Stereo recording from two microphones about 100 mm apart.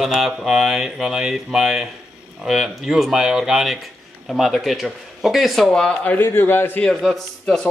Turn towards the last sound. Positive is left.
turn(degrees=0)  # may be behind; listen again after turning